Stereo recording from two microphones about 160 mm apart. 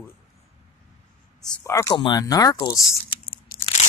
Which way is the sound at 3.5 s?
65° left (ahead or behind).